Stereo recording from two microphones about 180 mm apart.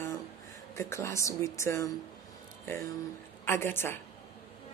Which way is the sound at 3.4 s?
10° left (ahead or behind).